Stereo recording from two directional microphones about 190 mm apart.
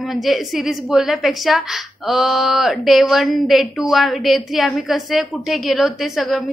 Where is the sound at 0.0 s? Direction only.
Centre (ahead or behind).